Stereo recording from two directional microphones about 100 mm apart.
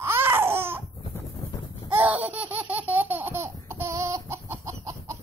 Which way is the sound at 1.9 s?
20° right (ahead or behind).